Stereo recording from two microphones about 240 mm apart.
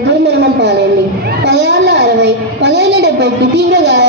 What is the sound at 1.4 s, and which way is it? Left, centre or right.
A woman's voice, right.